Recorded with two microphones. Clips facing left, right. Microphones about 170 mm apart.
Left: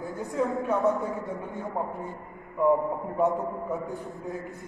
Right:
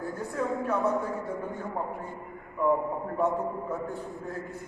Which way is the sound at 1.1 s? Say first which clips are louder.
Even; 20° left (ahead or behind).